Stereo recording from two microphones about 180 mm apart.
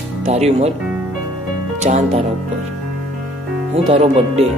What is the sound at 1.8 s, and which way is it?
Speech, 35° right (ahead or behind).